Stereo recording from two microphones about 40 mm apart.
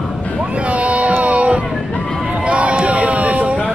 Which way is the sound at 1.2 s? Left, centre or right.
Right.